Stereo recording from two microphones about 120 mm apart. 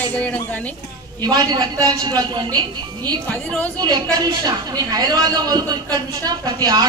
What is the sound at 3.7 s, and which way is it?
A woman's voice, 35° right (ahead or behind).